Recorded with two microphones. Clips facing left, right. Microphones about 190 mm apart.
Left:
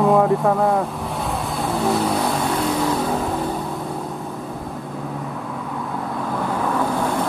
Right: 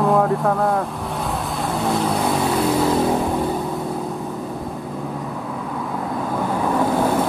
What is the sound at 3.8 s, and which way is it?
Vehicle, centre (ahead or behind).